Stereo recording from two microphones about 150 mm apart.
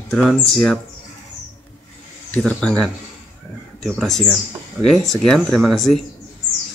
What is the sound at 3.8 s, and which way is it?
Speech, centre (ahead or behind).